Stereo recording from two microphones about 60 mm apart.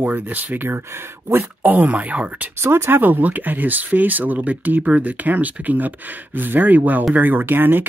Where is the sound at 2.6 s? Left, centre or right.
Right.